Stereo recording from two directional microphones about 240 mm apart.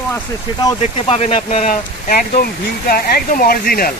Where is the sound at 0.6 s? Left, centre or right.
Left.